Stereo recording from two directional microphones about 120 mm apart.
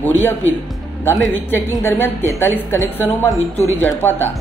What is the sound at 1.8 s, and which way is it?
A woman's voice, 20° left (ahead or behind).